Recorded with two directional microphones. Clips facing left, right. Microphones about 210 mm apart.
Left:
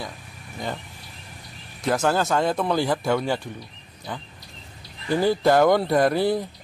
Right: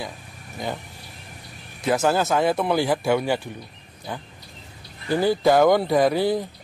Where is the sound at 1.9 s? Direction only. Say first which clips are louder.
Right 1 dB; 5° right (ahead or behind).